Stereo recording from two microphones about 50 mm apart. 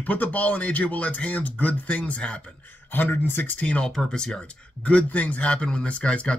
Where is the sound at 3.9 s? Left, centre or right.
Centre.